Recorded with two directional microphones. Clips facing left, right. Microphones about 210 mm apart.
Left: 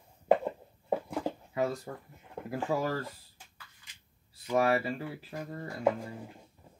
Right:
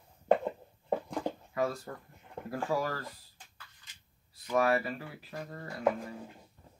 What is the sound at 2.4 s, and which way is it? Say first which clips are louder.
Speech: left 1 dB; 5° left (ahead or behind).